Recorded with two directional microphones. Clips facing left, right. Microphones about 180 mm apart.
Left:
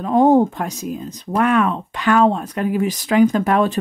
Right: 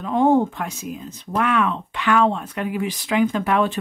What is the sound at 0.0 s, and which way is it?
Speech, 40° left (ahead or behind).